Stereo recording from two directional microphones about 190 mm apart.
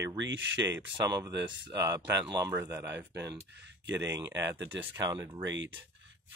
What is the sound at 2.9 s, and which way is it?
Speech, 65° right (ahead or behind).